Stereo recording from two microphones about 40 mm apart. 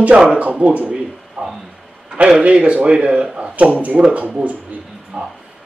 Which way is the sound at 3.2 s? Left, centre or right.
Centre.